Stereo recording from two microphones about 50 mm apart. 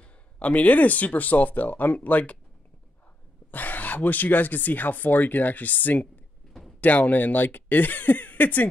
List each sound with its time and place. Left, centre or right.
0.0 s speech: left
3.5 s speech: left